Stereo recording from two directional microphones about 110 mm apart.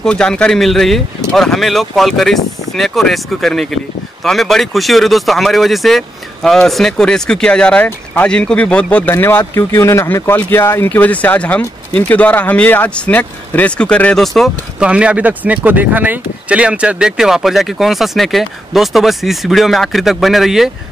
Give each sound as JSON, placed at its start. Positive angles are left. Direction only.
{"t": 0.0, "sound": "speech", "side_deg": 5}
{"t": 9.1, "sound": "speech", "side_deg": 20}
{"t": 14.8, "sound": "speech", "side_deg": -10}